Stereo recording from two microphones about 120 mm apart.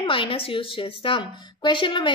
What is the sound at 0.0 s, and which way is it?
A woman's voice, 45° left (ahead or behind).